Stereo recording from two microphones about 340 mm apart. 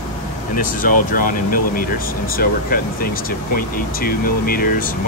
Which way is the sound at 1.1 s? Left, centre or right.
Left.